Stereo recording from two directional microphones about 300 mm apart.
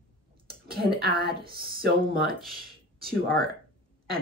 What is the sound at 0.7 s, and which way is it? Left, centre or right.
Speech, right.